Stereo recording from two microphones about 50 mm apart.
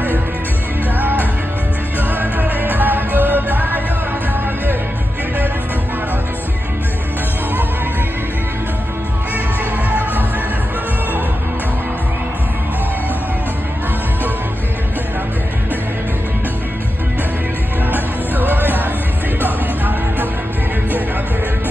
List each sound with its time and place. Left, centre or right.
2.1 s music: right
17.9 s music: right